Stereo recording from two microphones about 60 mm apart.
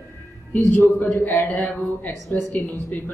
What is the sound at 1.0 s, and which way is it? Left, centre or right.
A man's voice, left.